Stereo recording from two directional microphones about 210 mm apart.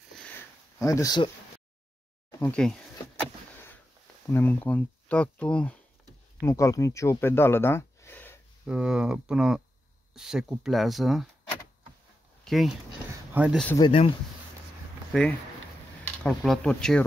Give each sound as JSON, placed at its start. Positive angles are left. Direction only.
{"t": 0.2, "sound": "sniff", "side_deg": 10}
{"t": 2.4, "sound": "a sound", "side_deg": 5}
{"t": 4.3, "sound": "speech", "side_deg": 10}
{"t": 8.6, "sound": "speech", "side_deg": -5}
{"t": 12.4, "sound": "speech", "side_deg": 0}
{"t": 13.7, "sound": "speech", "side_deg": 25}
{"t": 16.0, "sound": "speech", "side_deg": 5}